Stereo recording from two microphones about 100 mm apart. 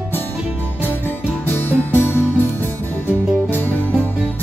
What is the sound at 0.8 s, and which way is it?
Music, 20° left (ahead or behind).